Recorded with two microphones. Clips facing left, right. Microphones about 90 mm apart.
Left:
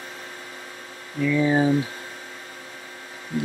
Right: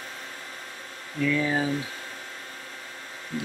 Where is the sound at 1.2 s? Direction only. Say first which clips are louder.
Left 5 dB; 20° left (ahead or behind).